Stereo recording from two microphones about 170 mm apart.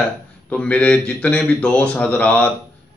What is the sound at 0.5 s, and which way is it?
Speech, 5° left (ahead or behind).